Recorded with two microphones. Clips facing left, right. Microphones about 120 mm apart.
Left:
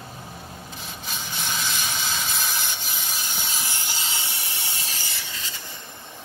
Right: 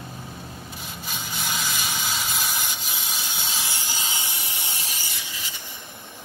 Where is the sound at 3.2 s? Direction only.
15° right (ahead or behind).